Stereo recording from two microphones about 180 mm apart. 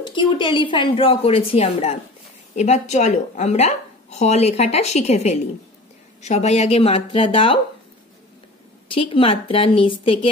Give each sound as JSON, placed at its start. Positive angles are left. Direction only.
{"t": 0.4, "sound": "a woman's voice", "side_deg": 25}
{"t": 8.8, "sound": "a woman's voice", "side_deg": 30}